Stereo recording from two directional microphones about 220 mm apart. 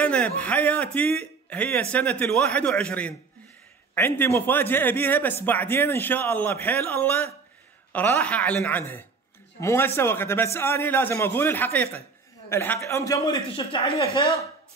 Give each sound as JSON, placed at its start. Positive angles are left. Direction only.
{"t": 0.0, "sound": "a man's voice", "side_deg": 5}